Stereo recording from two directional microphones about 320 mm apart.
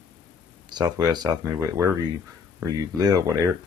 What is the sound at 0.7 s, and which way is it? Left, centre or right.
Speech, centre.